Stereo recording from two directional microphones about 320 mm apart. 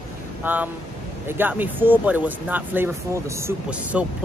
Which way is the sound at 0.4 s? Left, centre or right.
Centre.